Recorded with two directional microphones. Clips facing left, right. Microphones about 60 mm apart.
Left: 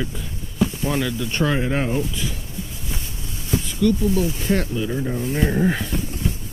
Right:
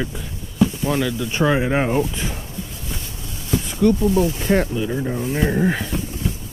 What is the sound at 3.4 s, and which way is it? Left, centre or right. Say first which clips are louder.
Speech: right 2 dB; right.